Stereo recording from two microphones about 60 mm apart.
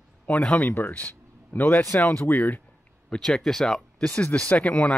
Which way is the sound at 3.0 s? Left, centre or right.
Centre.